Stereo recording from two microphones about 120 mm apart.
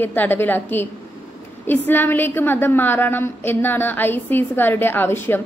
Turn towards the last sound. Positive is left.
turn(degrees=20)  # may be behind; listen again after turning